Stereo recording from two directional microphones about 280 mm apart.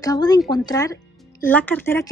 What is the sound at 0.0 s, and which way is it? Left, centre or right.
A woman's voice, centre.